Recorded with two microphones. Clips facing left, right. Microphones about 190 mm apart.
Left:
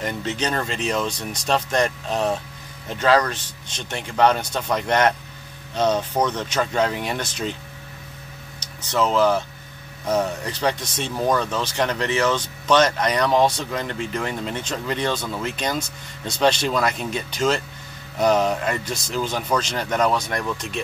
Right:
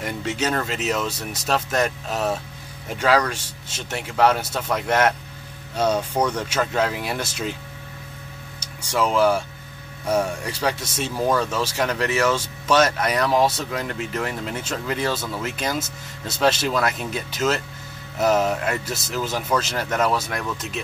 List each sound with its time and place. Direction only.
0.0 s speech: 10° right (ahead or behind)
8.5 s speech: 10° right (ahead or behind)